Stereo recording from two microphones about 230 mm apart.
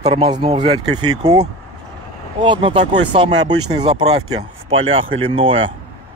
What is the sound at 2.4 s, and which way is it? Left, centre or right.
Speech, right.